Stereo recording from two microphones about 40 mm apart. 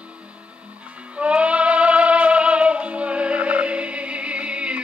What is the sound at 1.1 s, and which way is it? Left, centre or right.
Music, right.